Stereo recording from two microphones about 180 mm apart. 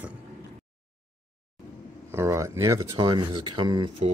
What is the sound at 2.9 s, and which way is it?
Speech, 30° right (ahead or behind).